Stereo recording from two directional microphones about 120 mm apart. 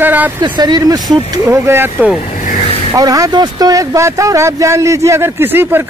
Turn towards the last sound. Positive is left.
turn(degrees=-20)  # may be behind; listen again after turning